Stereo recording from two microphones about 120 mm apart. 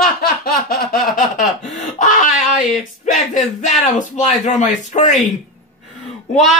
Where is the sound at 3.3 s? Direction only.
85° left.